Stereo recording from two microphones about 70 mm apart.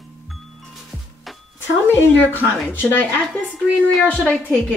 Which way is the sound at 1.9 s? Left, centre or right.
Left.